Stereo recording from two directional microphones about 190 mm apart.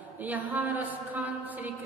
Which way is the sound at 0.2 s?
10° right (ahead or behind).